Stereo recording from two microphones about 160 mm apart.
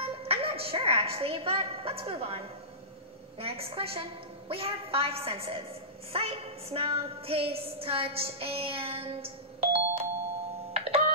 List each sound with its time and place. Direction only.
0.0 s music: 35° right (ahead or behind)
3.3 s a woman's voice: 35° right (ahead or behind)
10.7 s music: 40° right (ahead or behind)